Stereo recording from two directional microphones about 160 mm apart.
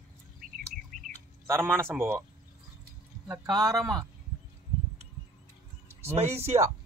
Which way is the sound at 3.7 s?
Centre (ahead or behind).